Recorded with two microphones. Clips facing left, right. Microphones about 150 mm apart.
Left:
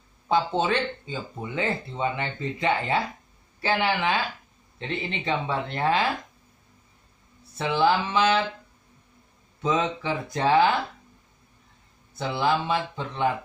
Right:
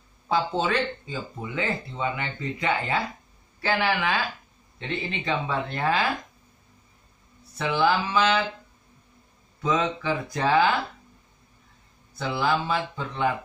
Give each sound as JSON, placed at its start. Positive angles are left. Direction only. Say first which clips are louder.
{"t": 0.3, "sound": "speech", "louder": "left 1 dB", "side_deg": 25}
{"t": 7.5, "sound": "speech", "louder": "left 1 dB", "side_deg": 25}
{"t": 9.6, "sound": "speech", "louder": "even", "side_deg": 25}
{"t": 12.2, "sound": "speech", "louder": "left 1 dB", "side_deg": 25}